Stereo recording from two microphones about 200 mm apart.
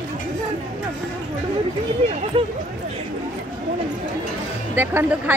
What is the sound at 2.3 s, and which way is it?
Speech, 25° right (ahead or behind).